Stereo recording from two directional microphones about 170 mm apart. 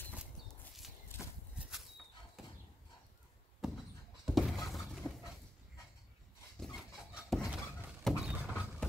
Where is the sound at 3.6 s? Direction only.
Centre (ahead or behind).